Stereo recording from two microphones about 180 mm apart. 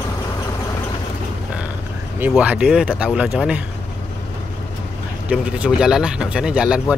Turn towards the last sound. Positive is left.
turn(degrees=-5)  # may be behind; listen again after turning